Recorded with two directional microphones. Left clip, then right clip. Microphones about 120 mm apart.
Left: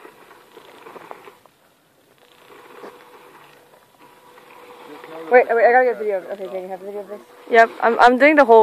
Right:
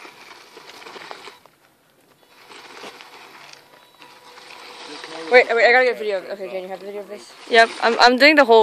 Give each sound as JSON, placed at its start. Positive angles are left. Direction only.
{"t": 0.8, "sound": "crumpling", "side_deg": -20}
{"t": 4.6, "sound": "boat", "side_deg": -25}
{"t": 5.3, "sound": "speech", "side_deg": 20}
{"t": 6.1, "sound": "speech", "side_deg": 35}
{"t": 7.4, "sound": "speech", "side_deg": -15}